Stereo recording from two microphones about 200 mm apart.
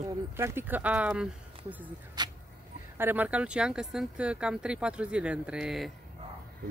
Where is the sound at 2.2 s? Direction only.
20° right (ahead or behind).